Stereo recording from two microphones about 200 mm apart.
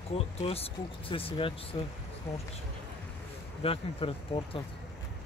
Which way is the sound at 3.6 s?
30° left (ahead or behind).